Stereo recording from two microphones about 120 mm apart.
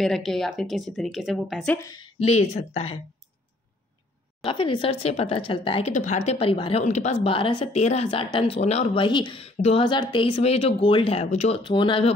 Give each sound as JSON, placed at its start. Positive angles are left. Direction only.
{"t": 0.0, "sound": "speech", "side_deg": 5}
{"t": 1.8, "sound": "a woman's voice", "side_deg": 30}
{"t": 2.1, "sound": "a woman's voice", "side_deg": 60}
{"t": 4.5, "sound": "speech", "side_deg": 45}
{"t": 5.9, "sound": "a woman's voice", "side_deg": 80}
{"t": 6.8, "sound": "a woman's voice", "side_deg": 70}
{"t": 7.7, "sound": "speech", "side_deg": 65}
{"t": 8.5, "sound": "a woman's voice", "side_deg": 65}
{"t": 9.0, "sound": "speech", "side_deg": 45}
{"t": 9.4, "sound": "a woman's voice", "side_deg": 55}
{"t": 9.8, "sound": "speech", "side_deg": 45}
{"t": 11.6, "sound": "speech", "side_deg": 40}